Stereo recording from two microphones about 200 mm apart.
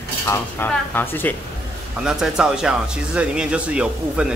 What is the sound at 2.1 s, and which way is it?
Speech, 5° right (ahead or behind).